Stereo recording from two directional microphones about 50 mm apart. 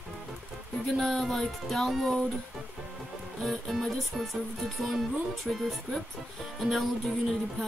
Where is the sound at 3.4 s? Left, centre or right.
Centre.